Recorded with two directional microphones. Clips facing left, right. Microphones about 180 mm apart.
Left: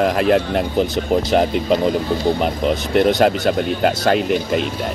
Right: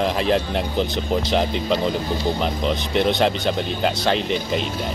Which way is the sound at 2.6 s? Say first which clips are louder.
Left 5 dB; 50° left (ahead or behind).